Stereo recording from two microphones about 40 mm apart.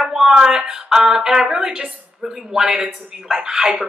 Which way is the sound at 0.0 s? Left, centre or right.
Centre.